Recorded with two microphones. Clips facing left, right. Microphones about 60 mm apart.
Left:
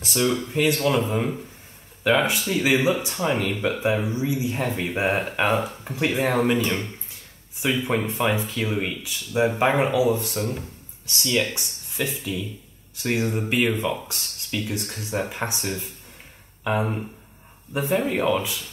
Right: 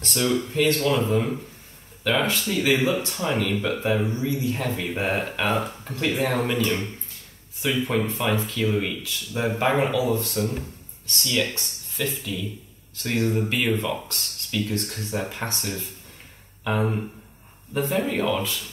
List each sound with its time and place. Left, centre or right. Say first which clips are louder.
0.0 s speech: left 1 dB; centre
2.0 s speech: left 2 dB; centre
7.6 s speech: left 1 dB; centre
8.1 s speech: left 1 dB; centre